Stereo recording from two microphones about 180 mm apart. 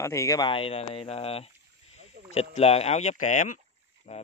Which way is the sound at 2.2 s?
65° right (ahead or behind).